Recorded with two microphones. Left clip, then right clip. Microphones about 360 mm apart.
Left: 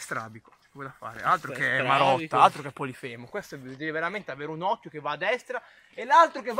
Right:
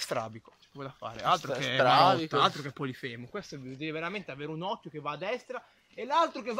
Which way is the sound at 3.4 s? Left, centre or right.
Left.